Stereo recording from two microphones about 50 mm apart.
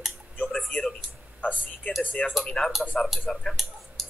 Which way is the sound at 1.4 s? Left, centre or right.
Left.